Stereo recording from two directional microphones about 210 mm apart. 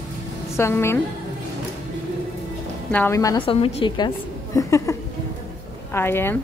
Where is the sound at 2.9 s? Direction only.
10° left (ahead or behind).